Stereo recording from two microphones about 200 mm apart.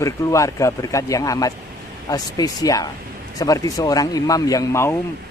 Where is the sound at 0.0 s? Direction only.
15° left (ahead or behind).